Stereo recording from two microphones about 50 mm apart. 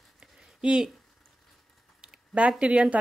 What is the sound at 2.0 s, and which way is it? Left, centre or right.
Speech, right.